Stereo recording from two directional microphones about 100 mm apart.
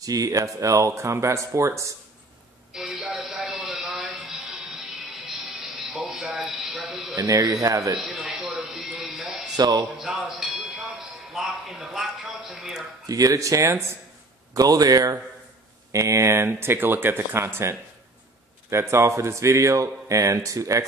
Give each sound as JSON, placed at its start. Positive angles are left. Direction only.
{"t": 0.0, "sound": "speech", "side_deg": -35}
{"t": 2.7, "sound": "a sound", "side_deg": -10}
{"t": 5.9, "sound": "a sound", "side_deg": 0}
{"t": 7.2, "sound": "speech", "side_deg": -35}
{"t": 8.0, "sound": "music", "side_deg": -5}
{"t": 9.6, "sound": "speech", "side_deg": -45}
{"t": 10.0, "sound": "speech", "side_deg": -5}
{"t": 11.3, "sound": "a sound", "side_deg": 0}
{"t": 11.8, "sound": "speech", "side_deg": -5}
{"t": 13.0, "sound": "speech", "side_deg": -35}